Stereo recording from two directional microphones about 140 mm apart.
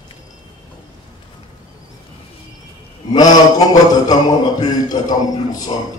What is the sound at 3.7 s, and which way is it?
A man's voice, 30° left (ahead or behind).